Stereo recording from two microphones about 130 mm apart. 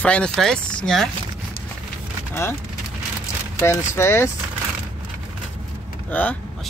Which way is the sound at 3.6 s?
20° left (ahead or behind).